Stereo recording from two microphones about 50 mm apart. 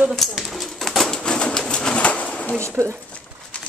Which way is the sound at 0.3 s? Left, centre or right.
Centre.